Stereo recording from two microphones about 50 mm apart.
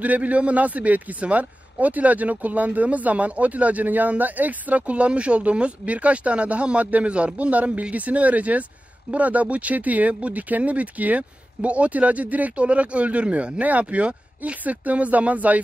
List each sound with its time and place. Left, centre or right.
0.0 s a man's voice: right